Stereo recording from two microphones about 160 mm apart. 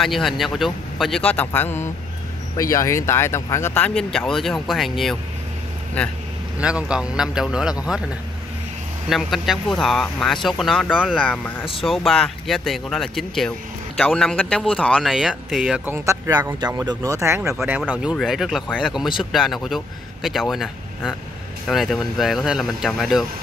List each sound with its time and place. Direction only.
0.0 s speech: centre (ahead or behind)
6.6 s speech: 5° right (ahead or behind)
9.1 s speech: centre (ahead or behind)
11.1 s speech: 10° left (ahead or behind)
11.8 s speech: centre (ahead or behind)
16.5 s speech: 25° right (ahead or behind); by 23.2 s centre (ahead or behind)